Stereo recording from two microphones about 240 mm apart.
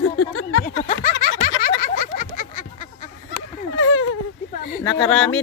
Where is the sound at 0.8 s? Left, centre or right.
Left.